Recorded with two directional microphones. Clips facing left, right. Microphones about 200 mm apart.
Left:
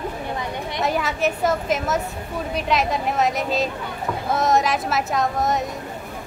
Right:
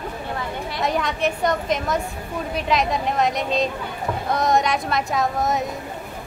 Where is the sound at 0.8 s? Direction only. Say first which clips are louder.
Even; centre (ahead or behind).